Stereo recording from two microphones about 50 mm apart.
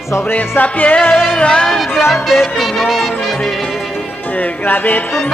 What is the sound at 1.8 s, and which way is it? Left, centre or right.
Music, centre.